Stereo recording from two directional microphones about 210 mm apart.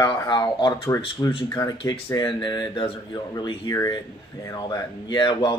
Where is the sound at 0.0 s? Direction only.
20° left (ahead or behind).